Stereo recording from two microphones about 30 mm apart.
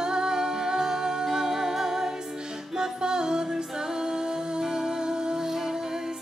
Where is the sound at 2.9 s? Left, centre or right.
Right.